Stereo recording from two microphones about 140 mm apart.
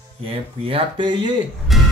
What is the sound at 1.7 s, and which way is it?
Music, centre (ahead or behind).